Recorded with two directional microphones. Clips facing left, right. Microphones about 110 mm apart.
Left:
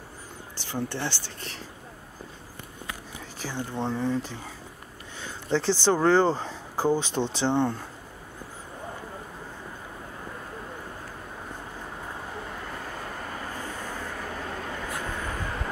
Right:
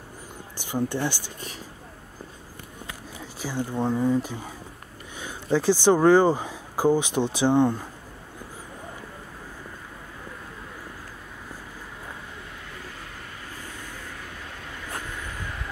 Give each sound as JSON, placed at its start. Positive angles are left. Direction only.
{"t": 0.6, "sound": "speech", "side_deg": -15}
{"t": 3.4, "sound": "speech", "side_deg": -10}
{"t": 12.6, "sound": "vehicle", "side_deg": 45}